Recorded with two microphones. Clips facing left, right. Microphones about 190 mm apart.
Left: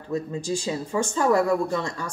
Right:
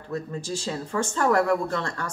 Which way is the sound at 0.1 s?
15° left (ahead or behind).